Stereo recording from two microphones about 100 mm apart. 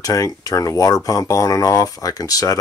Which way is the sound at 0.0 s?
35° left (ahead or behind).